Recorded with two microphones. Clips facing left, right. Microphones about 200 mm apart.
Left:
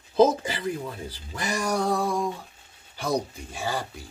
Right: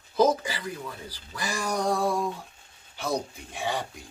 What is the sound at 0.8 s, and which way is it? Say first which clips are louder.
Speech: left 4 dB; 25° left (ahead or behind).